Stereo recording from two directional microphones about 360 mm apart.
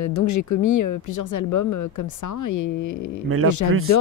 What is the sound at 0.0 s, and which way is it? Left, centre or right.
Speech, left.